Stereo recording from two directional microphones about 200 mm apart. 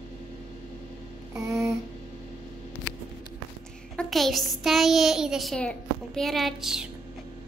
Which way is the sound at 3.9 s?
Centre (ahead or behind).